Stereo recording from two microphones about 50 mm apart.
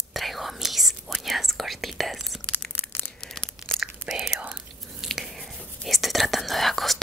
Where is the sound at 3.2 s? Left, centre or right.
Centre.